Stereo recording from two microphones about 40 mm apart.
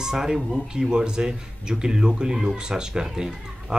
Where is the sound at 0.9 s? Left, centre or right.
Centre.